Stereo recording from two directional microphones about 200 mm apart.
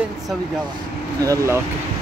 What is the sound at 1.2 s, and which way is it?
Speech, 15° right (ahead or behind).